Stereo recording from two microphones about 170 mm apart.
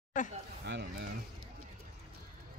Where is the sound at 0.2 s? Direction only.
45° left (ahead or behind).